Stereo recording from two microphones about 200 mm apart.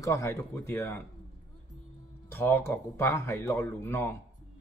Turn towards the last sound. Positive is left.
turn(degrees=10)  # may be behind; listen again after turning